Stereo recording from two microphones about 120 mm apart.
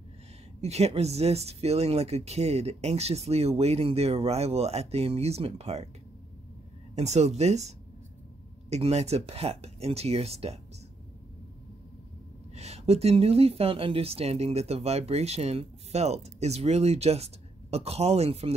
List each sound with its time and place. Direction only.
0.6 s speech: 60° right (ahead or behind)
7.0 s speech: 65° right (ahead or behind)
12.5 s speech: 65° right (ahead or behind)